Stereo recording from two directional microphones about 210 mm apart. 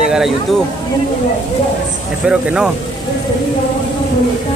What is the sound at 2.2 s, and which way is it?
Speech, 5° right (ahead or behind).